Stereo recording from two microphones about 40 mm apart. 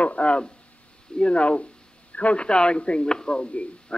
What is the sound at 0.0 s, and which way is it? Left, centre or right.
A man's voice, left.